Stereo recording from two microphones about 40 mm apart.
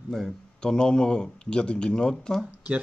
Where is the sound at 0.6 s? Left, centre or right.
Left.